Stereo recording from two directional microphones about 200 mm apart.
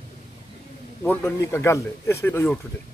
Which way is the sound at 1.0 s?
10° left (ahead or behind).